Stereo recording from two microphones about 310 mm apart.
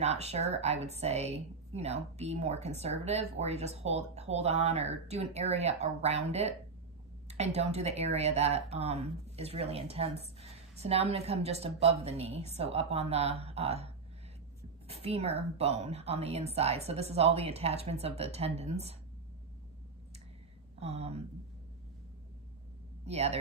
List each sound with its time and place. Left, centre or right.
0.0 s speech: right
20.8 s speech: centre
23.0 s speech: centre